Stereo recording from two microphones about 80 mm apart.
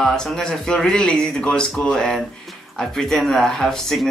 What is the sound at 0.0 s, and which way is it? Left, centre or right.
Speech, centre.